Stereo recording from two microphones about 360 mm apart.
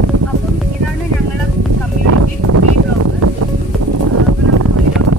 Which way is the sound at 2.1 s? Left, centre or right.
Right.